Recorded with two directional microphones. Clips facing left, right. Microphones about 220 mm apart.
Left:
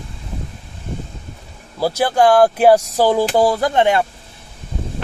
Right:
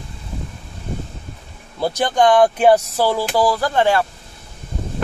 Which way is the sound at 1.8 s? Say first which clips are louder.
Left 2 dB; 5° left (ahead or behind).